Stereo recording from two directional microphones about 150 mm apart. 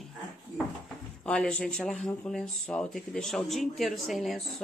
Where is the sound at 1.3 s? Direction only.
5° left (ahead or behind).